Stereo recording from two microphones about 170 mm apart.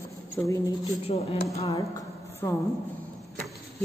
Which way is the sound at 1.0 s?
35° left (ahead or behind).